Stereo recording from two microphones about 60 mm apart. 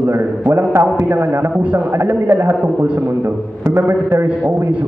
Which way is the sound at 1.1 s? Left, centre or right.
Right.